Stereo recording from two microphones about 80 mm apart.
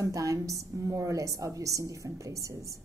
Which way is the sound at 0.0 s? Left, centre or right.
Right.